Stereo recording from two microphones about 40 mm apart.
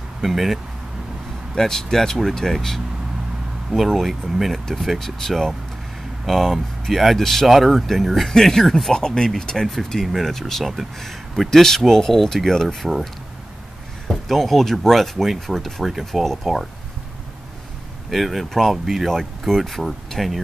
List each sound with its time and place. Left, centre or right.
0.2 s speech: centre
1.5 s speech: centre
3.7 s speech: centre
4.6 s speech: centre
8.9 s speech: centre
10.6 s speech: centre
16.1 s speech: centre
18.1 s speech: centre